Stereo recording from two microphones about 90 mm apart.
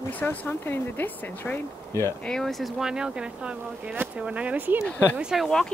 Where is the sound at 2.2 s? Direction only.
5° left (ahead or behind); by 4.8 s 20° right (ahead or behind).